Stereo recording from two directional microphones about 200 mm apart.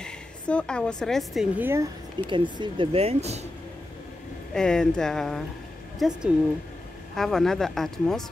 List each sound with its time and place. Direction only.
0.0 s speech: 5° left (ahead or behind); by 1.9 s 10° right (ahead or behind)
2.2 s speech: 25° right (ahead or behind)
4.6 s speech: 5° left (ahead or behind)